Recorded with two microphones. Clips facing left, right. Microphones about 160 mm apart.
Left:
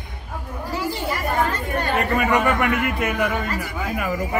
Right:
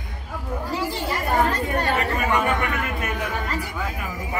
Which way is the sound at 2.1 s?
80° left.